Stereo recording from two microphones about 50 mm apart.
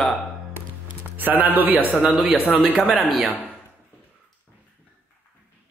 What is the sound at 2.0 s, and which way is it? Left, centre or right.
Speech, centre.